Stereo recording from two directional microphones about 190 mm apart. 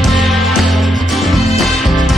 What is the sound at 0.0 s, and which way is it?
Music, centre (ahead or behind).